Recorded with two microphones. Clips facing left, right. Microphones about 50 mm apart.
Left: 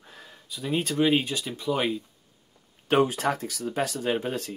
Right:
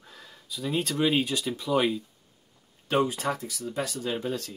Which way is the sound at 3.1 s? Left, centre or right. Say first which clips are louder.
Left 3 dB; left.